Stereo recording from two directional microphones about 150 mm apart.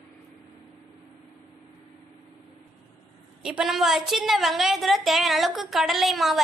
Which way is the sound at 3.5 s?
Centre (ahead or behind).